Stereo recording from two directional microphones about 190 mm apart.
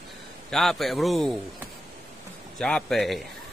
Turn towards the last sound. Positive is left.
turn(degrees=0)  # may be behind; listen again after turning